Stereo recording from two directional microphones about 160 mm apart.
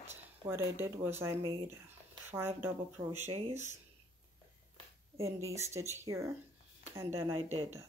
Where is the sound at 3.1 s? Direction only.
45° right (ahead or behind).